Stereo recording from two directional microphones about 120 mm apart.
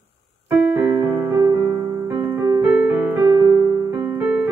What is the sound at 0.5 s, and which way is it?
Music, 15° right (ahead or behind).